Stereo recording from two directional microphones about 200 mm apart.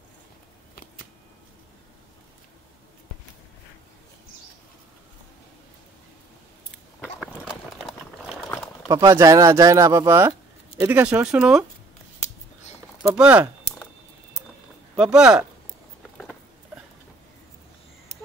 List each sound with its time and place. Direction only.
7.0 s a sound: centre (ahead or behind)
8.8 s speech: 15° right (ahead or behind)
13.0 s speech: 5° right (ahead or behind)
15.0 s speech: 5° right (ahead or behind)